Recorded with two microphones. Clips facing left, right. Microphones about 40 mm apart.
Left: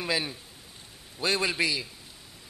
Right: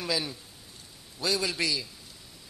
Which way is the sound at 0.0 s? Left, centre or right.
Left.